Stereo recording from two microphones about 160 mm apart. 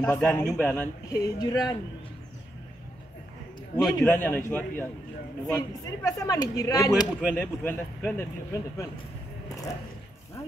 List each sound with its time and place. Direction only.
0.0 s a man's voice: 5° left (ahead or behind)
1.1 s speech: 25° left (ahead or behind)
3.7 s a man's voice: 10° left (ahead or behind)
5.5 s speech: 20° left (ahead or behind)
7.2 s a man's voice: 10° left (ahead or behind)